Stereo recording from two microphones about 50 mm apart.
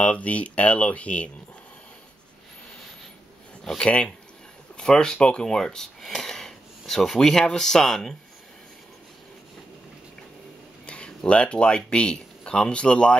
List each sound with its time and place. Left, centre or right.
0.0 s speech: left
3.6 s speech: centre
10.9 s speech: left